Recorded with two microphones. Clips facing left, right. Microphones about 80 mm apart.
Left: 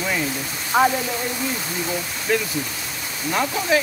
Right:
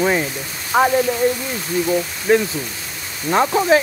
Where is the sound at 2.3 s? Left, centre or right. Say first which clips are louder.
Right 6 dB; right.